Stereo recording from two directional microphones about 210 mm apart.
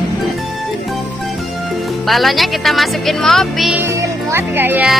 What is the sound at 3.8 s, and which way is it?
Speech, 15° right (ahead or behind).